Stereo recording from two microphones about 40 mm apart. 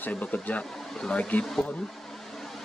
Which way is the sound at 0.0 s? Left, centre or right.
Left.